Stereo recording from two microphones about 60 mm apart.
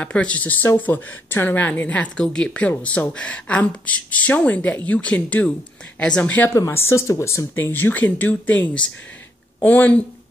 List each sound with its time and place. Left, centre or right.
0.0 s speech: left
2.1 s a woman's voice: centre
6.7 s speech: left
7.5 s speech: left